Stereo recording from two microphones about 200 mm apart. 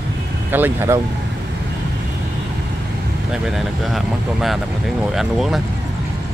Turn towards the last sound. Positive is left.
turn(degrees=0)  # may be behind; listen again after turning